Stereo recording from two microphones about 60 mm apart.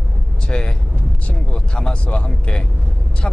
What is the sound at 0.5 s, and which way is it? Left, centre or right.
Vehicle, centre.